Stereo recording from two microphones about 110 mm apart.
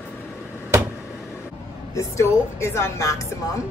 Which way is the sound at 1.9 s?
25° left (ahead or behind).